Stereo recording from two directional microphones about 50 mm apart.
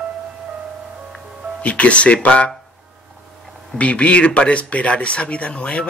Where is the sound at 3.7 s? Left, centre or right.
Left.